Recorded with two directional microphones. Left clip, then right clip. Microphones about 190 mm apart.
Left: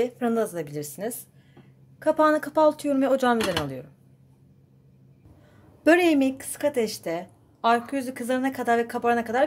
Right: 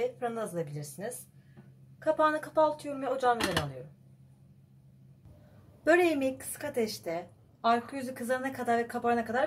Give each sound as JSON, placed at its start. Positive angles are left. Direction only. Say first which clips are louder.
{"t": 0.0, "sound": "a woman's voice", "louder": "left 8 dB", "side_deg": 55}
{"t": 5.9, "sound": "a woman's voice", "louder": "left 6 dB", "side_deg": 45}